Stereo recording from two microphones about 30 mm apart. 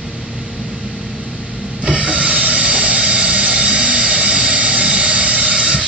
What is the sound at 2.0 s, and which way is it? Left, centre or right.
Hiss, right.